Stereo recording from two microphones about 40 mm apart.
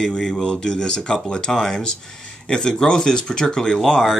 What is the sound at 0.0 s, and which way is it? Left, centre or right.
Speech, centre.